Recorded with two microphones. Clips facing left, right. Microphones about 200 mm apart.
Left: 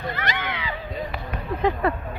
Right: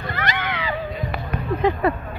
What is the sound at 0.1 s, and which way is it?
Cat, 75° right (ahead or behind).